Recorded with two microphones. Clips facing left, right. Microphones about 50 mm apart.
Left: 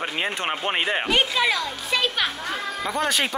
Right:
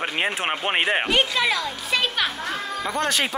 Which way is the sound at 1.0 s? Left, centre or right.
Centre.